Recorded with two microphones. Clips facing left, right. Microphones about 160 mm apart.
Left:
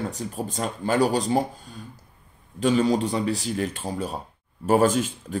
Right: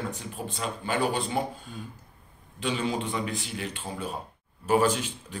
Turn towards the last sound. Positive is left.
turn(degrees=45)  # may be behind; listen again after turning